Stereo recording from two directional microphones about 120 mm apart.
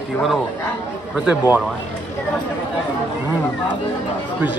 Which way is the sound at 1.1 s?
5° right (ahead or behind).